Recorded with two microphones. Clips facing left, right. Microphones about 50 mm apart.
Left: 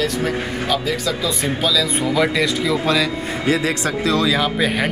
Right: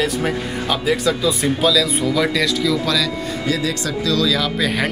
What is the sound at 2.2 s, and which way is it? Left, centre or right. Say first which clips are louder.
Speech: left 2 dB; left.